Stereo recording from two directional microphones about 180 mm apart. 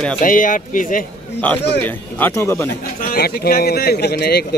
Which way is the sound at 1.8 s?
10° left (ahead or behind).